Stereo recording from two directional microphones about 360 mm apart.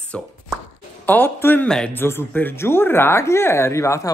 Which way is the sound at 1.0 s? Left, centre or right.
Centre.